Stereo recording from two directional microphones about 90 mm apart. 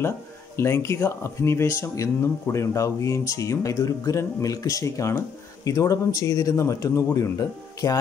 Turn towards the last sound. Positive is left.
turn(degrees=40)  # may be behind; listen again after turning